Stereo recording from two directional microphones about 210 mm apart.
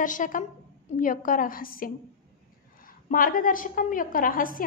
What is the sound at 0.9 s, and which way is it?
A woman's voice, 40° left (ahead or behind).